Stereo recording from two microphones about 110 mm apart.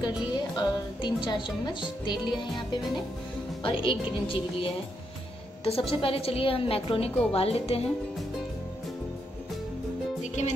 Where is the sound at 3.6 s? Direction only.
50° left (ahead or behind).